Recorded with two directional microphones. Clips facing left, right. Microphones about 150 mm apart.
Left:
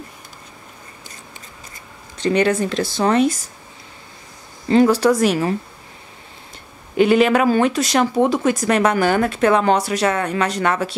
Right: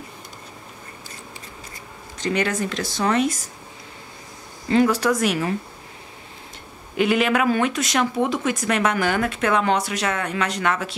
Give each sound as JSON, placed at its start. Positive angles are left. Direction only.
{"t": 2.1, "sound": "speech", "side_deg": 30}
{"t": 4.6, "sound": "speech", "side_deg": 30}
{"t": 7.0, "sound": "speech", "side_deg": 35}